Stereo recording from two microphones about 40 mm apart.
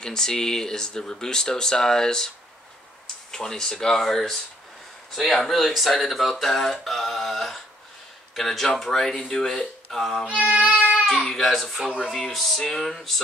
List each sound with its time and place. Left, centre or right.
0.0 s speech: centre
10.2 s speech: right
11.1 s speech: centre